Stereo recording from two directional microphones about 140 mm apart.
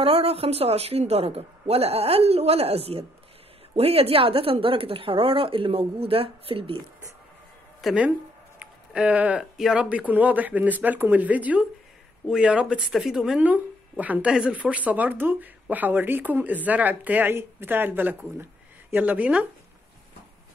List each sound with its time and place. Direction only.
0.0 s a woman's voice: 45° right (ahead or behind)
7.8 s speech: 10° right (ahead or behind)